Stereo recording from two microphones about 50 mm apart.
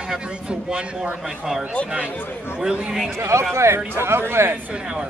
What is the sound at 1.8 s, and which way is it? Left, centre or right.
Speech, left.